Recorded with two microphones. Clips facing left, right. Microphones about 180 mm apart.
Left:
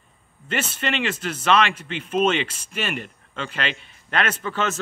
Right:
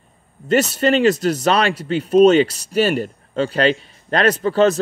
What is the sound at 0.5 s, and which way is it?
Speech, 40° right (ahead or behind).